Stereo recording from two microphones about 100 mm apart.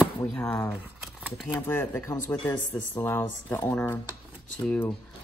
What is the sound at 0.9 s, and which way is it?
Shuffling cards, 5° right (ahead or behind).